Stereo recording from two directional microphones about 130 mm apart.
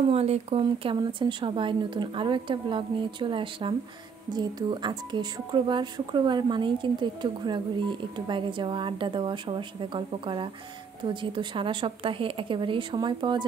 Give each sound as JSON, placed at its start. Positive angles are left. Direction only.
{"t": 0.1, "sound": "speech", "side_deg": -50}
{"t": 0.7, "sound": "speech", "side_deg": -35}